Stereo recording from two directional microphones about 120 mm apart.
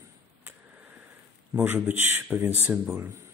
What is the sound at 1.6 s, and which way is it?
Speech, 15° right (ahead or behind).